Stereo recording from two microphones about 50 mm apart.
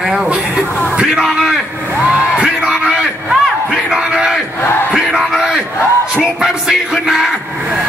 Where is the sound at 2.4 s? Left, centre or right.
Centre.